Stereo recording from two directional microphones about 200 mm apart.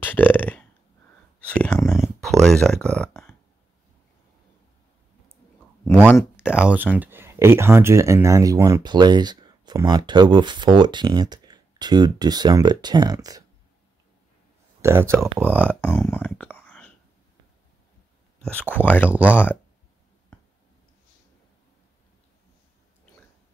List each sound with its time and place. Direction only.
0.0 s burping: 10° left (ahead or behind)
1.5 s a sound: 5° left (ahead or behind)
2.4 s speech: 5° left (ahead or behind)
6.5 s speech: 5° right (ahead or behind)
14.8 s speech: 15° right (ahead or behind)
15.7 s speech: 10° left (ahead or behind)
18.4 s speech: 5° left (ahead or behind)
18.7 s speech: 10° right (ahead or behind)
18.9 s speech: 10° left (ahead or behind)